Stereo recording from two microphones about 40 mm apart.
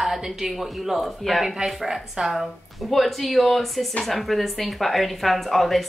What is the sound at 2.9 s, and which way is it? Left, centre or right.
A woman's voice, centre.